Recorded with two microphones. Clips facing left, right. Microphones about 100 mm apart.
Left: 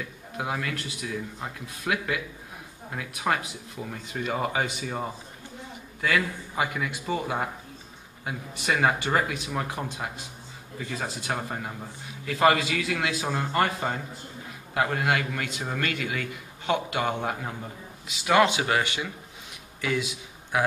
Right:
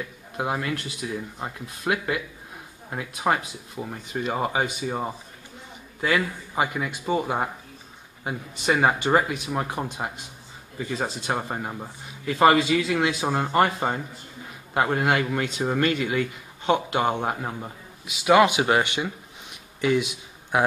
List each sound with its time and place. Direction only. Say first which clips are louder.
0.4 s a man's voice: right 4 dB; 20° right (ahead or behind)
10.9 s a man's voice: right 4 dB; 25° right (ahead or behind)
18.0 s a man's voice: right 4 dB; 15° right (ahead or behind)